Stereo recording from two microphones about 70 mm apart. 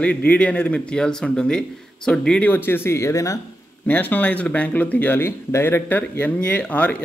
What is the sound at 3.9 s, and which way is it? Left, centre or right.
Speech, left.